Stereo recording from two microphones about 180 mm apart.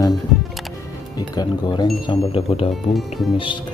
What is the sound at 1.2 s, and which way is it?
A man's voice, 25° left (ahead or behind).